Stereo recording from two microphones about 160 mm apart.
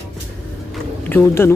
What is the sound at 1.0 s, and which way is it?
Speech, 15° left (ahead or behind).